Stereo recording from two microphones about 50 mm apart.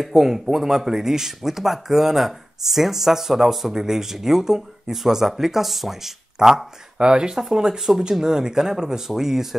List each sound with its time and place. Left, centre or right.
0.0 s speech: centre
7.0 s speech: centre